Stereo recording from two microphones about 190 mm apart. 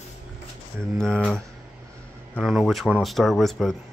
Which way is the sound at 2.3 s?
Centre (ahead or behind).